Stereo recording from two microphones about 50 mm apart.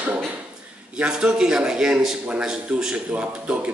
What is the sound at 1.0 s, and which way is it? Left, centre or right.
A man's voice, centre.